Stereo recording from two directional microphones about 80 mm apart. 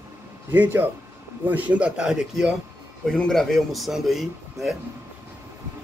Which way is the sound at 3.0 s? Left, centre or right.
Centre.